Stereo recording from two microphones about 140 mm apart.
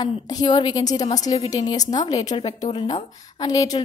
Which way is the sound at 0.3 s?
30° left (ahead or behind).